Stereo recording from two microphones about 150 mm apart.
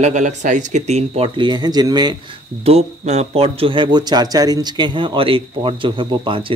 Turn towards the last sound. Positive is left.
turn(degrees=-35)  # may be behind; listen again after turning